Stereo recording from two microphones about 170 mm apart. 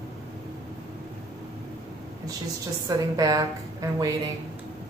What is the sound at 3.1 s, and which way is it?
Speech, 20° right (ahead or behind).